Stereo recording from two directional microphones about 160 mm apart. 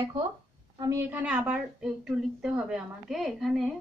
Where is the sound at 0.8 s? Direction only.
15° right (ahead or behind); by 3.7 s centre (ahead or behind).